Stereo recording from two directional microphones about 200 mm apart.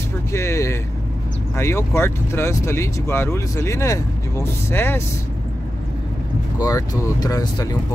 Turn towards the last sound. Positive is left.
turn(degrees=20)  # may be behind; listen again after turning